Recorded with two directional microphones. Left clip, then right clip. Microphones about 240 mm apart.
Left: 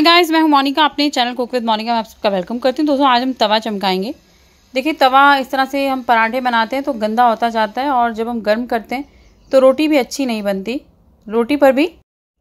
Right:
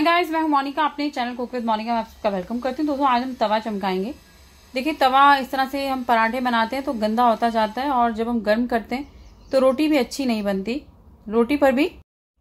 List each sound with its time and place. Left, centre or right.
0.0 s a woman's voice: left
4.7 s a woman's voice: left